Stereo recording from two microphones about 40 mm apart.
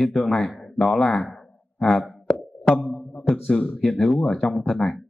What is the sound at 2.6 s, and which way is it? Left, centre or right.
Music, left.